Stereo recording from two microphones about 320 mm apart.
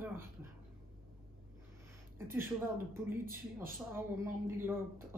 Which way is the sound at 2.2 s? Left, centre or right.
Centre.